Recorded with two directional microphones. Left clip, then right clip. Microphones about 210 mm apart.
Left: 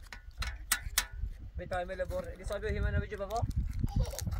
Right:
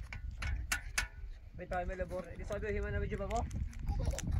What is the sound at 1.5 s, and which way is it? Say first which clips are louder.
Speech: left 3 dB; 20° left (ahead or behind).